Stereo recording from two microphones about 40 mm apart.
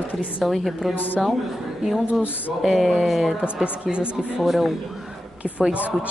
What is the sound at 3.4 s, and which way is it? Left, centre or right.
Speech, right.